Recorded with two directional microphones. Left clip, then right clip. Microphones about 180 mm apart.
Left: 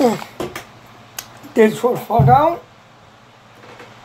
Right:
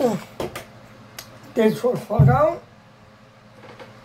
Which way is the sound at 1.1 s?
25° left (ahead or behind).